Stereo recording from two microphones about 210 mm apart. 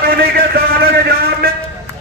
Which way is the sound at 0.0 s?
45° right (ahead or behind).